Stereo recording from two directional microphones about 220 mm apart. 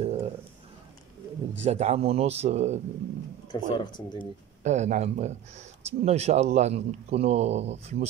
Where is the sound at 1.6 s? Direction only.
30° right (ahead or behind).